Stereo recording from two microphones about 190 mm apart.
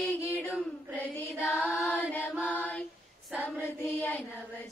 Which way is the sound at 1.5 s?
5° left (ahead or behind).